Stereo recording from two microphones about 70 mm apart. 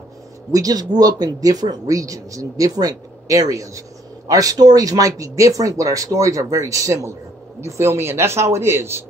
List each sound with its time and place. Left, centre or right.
0.5 s speech: right